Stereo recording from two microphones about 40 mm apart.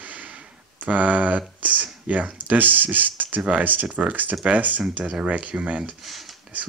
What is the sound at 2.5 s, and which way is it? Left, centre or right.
Speech, right.